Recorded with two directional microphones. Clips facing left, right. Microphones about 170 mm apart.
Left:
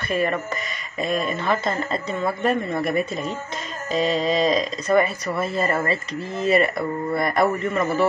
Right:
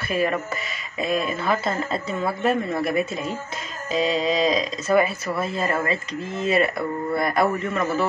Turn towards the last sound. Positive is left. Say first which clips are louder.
# left 1 dB
turn(degrees=0)  # may be behind; listen again after turning